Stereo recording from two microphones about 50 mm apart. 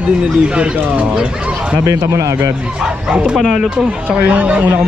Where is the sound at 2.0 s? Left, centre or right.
Right.